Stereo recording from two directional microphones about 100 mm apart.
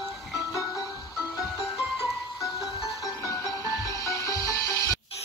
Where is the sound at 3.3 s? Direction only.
35° left (ahead or behind).